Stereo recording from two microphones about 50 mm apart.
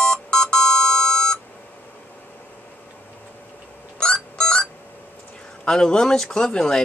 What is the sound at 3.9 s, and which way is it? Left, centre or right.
Music, centre.